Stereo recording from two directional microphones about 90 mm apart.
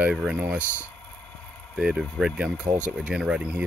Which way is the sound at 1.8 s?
5° right (ahead or behind).